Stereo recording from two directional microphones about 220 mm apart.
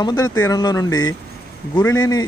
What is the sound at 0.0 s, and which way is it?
Speech, 20° left (ahead or behind).